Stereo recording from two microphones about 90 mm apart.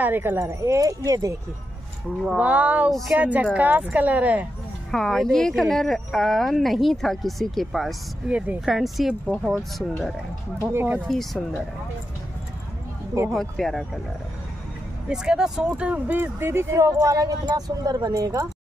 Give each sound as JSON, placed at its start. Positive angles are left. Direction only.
{"t": 0.0, "sound": "speech", "side_deg": -25}
{"t": 2.3, "sound": "speech", "side_deg": -15}
{"t": 2.9, "sound": "speech", "side_deg": 0}
{"t": 3.2, "sound": "speech", "side_deg": -15}
{"t": 4.9, "sound": "speech", "side_deg": 5}
{"t": 8.3, "sound": "speech", "side_deg": -15}
{"t": 8.5, "sound": "speech", "side_deg": 0}
{"t": 10.7, "sound": "speech", "side_deg": -25}
{"t": 13.3, "sound": "speech", "side_deg": 0}
{"t": 15.0, "sound": "speech", "side_deg": -5}